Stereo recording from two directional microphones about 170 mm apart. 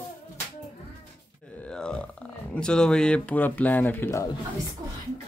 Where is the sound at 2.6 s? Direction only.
5° left (ahead or behind).